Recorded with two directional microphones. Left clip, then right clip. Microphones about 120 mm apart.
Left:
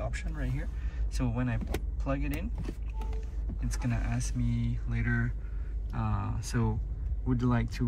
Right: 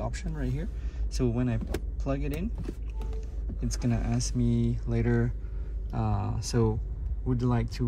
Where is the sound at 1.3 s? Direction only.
30° right (ahead or behind).